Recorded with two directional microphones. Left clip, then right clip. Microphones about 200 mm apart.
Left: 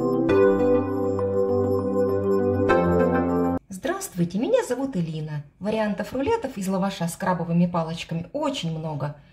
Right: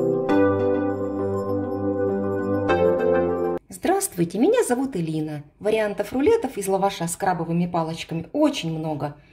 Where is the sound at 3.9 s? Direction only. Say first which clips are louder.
Right 6 dB; 40° right (ahead or behind).